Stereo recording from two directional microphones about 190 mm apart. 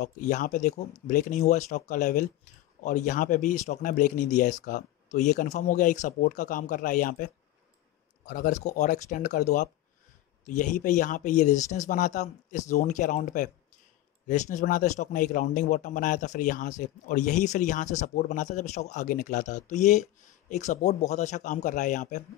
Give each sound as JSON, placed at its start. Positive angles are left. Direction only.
{"t": 0.0, "sound": "speech", "side_deg": 40}
{"t": 8.3, "sound": "speech", "side_deg": 40}